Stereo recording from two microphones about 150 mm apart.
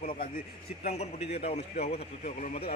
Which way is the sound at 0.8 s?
45° left (ahead or behind).